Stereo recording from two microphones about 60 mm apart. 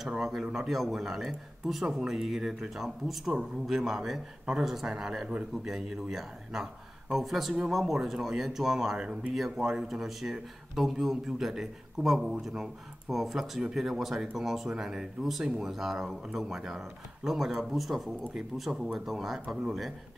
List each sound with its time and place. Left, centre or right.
0.1 s speech: centre
8.9 s speech: centre